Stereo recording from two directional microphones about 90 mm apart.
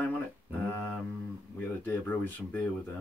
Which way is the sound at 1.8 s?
20° left (ahead or behind).